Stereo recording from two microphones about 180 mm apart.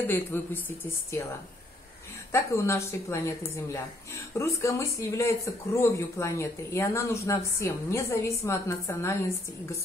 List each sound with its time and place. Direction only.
0.0 s speech: 10° left (ahead or behind)
2.3 s speech: 15° left (ahead or behind)